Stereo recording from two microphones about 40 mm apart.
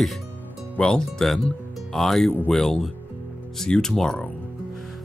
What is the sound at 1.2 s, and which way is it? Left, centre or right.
Speech, centre.